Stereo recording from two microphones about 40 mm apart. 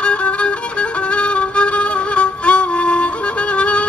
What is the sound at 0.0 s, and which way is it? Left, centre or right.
Music, left.